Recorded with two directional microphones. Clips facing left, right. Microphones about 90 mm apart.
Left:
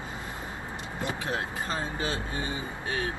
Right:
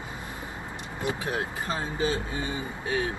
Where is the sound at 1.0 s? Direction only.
20° right (ahead or behind).